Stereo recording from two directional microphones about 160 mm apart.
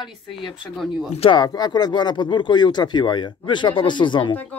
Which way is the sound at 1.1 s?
35° left (ahead or behind).